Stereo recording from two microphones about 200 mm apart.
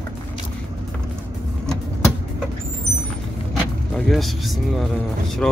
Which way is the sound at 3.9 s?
Centre (ahead or behind).